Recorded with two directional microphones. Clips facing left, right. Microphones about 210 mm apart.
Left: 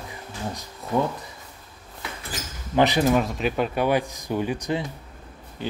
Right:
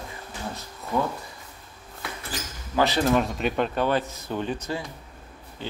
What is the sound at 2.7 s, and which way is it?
Speech, 15° left (ahead or behind).